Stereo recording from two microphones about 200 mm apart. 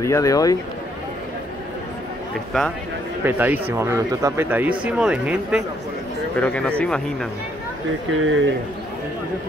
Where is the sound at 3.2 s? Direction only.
10° right (ahead or behind).